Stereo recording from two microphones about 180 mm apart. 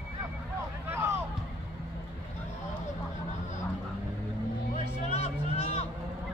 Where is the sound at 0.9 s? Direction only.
15° right (ahead or behind).